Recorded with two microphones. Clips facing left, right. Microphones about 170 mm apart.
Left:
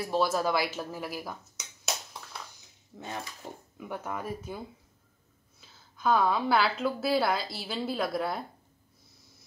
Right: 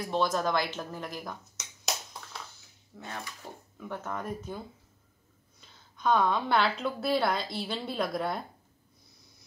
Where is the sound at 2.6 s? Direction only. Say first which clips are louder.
Left 2 dB; 15° left (ahead or behind).